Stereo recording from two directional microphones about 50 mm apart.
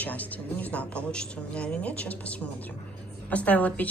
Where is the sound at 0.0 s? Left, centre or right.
Left.